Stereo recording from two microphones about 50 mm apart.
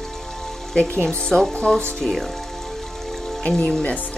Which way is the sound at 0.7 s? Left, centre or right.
Left.